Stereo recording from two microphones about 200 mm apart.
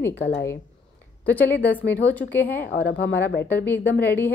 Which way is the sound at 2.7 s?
60° left (ahead or behind).